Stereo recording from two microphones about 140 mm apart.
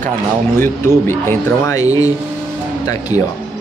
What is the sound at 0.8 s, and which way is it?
Speech, 15° left (ahead or behind).